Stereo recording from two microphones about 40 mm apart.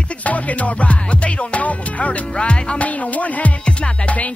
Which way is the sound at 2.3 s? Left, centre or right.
Left.